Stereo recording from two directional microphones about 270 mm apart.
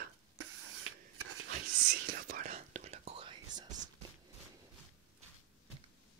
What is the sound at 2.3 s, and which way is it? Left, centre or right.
Whispering, right.